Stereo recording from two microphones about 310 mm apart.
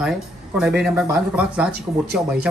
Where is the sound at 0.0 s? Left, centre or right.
Centre.